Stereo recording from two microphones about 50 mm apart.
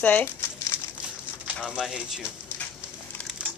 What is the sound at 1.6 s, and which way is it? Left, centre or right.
Speech, centre.